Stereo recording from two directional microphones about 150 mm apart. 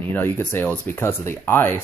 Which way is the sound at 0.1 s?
15° left (ahead or behind).